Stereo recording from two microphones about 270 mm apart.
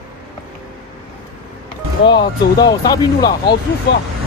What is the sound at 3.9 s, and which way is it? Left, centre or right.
Speech, left.